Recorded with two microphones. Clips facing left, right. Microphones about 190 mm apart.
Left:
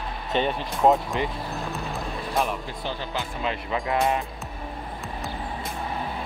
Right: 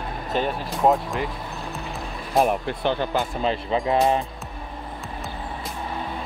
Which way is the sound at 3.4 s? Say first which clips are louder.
Right 2 dB; 30° right (ahead or behind).